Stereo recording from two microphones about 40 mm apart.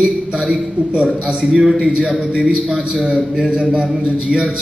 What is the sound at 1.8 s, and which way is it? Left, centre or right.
A man's voice, right.